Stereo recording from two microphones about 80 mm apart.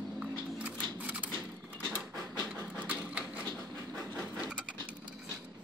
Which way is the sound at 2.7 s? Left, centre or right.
Centre.